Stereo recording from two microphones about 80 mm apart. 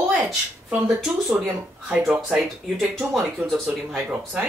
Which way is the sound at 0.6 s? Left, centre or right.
Centre.